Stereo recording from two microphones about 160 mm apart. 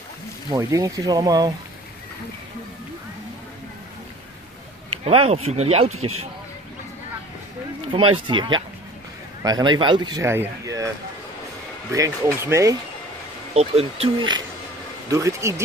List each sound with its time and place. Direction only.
0.6 s speech: 20° right (ahead or behind)
5.0 s speech: 40° right (ahead or behind)
7.9 s speech: 35° right (ahead or behind)
11.9 s speech: 15° right (ahead or behind)
13.6 s speech: 40° right (ahead or behind)
15.0 s speech: 20° right (ahead or behind)